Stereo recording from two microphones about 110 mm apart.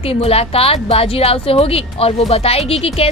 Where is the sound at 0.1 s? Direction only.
65° left (ahead or behind).